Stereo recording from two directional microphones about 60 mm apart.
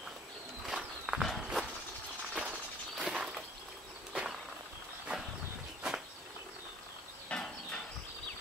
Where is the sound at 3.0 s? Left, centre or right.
Centre.